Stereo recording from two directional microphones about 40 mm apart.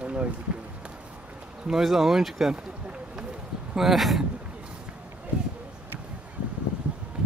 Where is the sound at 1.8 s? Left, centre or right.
Centre.